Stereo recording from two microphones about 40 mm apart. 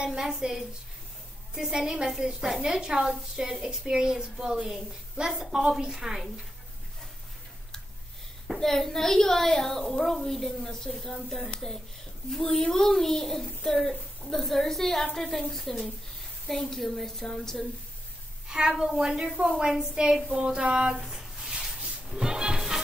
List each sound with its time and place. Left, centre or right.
0.0 s a woman's voice: centre
3.5 s speech: centre
3.8 s a woman's voice: centre
8.5 s a woman's voice: centre
18.5 s a woman's voice: centre
21.0 s a sound: centre
21.7 s a sound: right
22.1 s a woman's voice: centre